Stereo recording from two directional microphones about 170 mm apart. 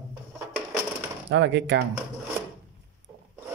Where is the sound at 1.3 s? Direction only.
90° right.